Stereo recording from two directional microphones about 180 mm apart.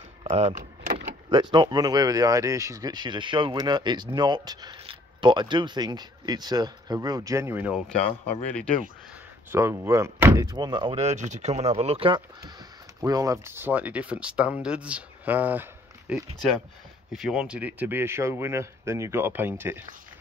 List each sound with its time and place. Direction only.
0.2 s power windows: 30° right (ahead or behind)
1.3 s speech: 25° right (ahead or behind); by 7.8 s 10° right (ahead or behind)
9.5 s speech: 15° right (ahead or behind); by 12.2 s 30° right (ahead or behind)
13.0 s speech: 20° right (ahead or behind)
16.3 s speech: 5° left (ahead or behind); by 19.8 s 10° right (ahead or behind)